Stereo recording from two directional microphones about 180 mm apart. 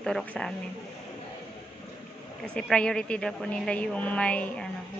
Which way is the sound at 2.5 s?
5° left (ahead or behind).